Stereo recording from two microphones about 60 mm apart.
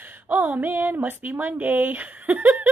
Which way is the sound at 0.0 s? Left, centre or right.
Right.